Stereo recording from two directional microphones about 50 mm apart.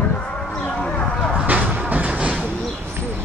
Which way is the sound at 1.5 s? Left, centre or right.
Right.